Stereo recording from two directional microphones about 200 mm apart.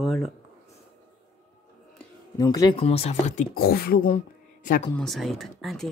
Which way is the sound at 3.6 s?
50° left (ahead or behind).